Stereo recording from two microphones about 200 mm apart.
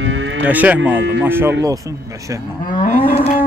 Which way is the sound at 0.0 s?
70° right (ahead or behind).